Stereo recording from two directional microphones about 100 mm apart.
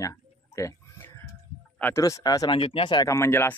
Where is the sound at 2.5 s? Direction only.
65° left (ahead or behind).